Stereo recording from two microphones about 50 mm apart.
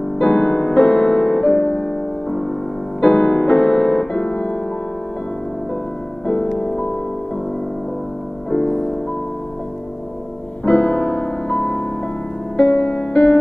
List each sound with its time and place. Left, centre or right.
0.2 s music: centre
6.2 s music: centre
8.5 s music: centre
10.7 s music: left